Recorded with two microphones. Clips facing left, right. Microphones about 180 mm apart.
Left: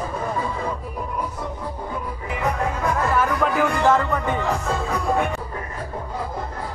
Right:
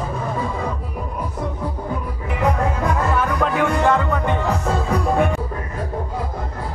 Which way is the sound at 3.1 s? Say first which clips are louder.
Right 1 dB; 5° left (ahead or behind).